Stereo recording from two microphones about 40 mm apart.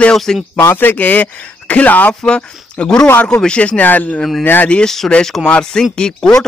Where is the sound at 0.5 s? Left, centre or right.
Left.